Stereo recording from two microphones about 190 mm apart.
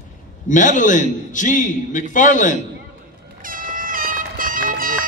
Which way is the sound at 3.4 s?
45° right (ahead or behind).